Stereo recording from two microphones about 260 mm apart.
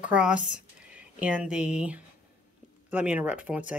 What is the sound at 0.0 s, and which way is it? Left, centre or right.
Speech, centre.